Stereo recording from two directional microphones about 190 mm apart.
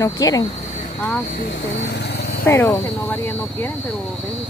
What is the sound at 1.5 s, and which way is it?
Vehicle, 65° left (ahead or behind).